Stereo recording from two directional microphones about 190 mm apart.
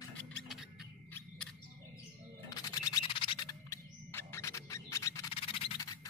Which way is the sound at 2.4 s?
20° left (ahead or behind).